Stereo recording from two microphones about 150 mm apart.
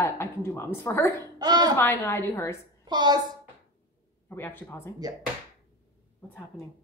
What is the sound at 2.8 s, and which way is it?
Speech, 30° right (ahead or behind).